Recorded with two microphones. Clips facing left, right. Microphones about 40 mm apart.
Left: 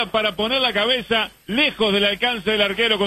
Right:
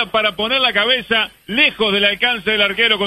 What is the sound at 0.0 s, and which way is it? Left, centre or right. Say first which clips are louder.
A man's voice: right 3 dB; centre.